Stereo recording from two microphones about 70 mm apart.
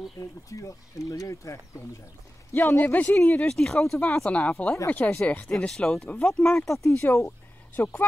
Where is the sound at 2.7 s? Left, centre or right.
Left.